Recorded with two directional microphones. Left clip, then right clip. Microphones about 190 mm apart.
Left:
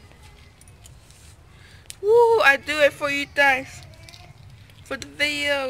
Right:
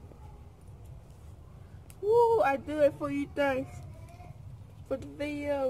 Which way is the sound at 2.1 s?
30° left (ahead or behind).